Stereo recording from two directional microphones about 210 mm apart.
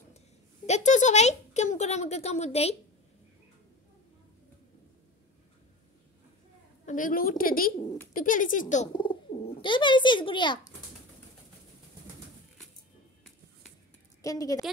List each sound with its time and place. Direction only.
0.7 s speech: 35° left (ahead or behind)
6.9 s a woman's voice: 40° left (ahead or behind)
8.9 s speech: 25° left (ahead or behind)
14.2 s a woman's voice: 15° left (ahead or behind)